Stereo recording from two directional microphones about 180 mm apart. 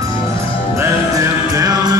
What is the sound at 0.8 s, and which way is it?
Music, 15° right (ahead or behind).